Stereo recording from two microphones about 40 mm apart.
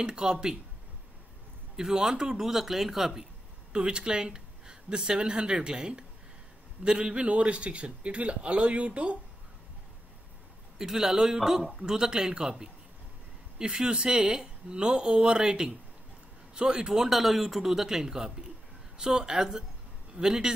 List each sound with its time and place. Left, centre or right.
0.0 s a man's voice: right
1.8 s speech: centre
3.7 s a man's voice: right
10.8 s a man's voice: centre